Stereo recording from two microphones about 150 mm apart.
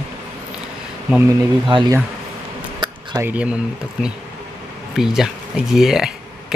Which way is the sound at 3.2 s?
10° right (ahead or behind).